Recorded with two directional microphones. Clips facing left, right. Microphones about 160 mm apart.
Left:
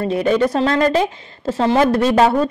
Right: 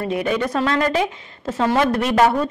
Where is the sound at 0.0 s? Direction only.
35° left (ahead or behind).